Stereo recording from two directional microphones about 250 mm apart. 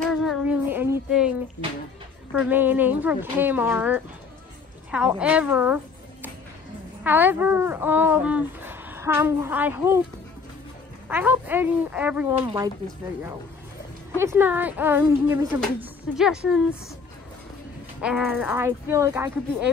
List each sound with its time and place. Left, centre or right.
0.1 s music: centre
2.3 s a woman's voice: centre
7.0 s speech: centre
11.1 s speech: centre
12.4 s speech: centre
14.1 s speech: centre
18.0 s speech: centre